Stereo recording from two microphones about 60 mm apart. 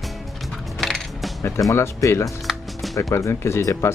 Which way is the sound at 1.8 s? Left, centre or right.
Left.